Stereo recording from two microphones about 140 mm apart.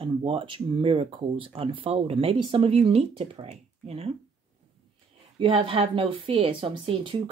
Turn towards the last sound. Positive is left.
turn(degrees=-40)  # may be behind; listen again after turning